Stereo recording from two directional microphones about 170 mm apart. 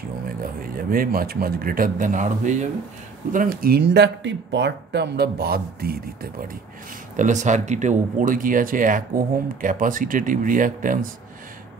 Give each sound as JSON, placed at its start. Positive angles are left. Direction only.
{"t": 0.4, "sound": "speech", "side_deg": -55}
{"t": 3.3, "sound": "speech", "side_deg": -60}
{"t": 7.2, "sound": "speech", "side_deg": -45}